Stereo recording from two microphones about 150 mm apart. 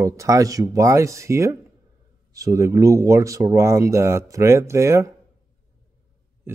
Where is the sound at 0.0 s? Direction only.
20° right (ahead or behind).